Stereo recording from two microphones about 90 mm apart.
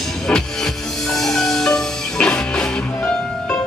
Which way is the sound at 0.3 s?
5° left (ahead or behind).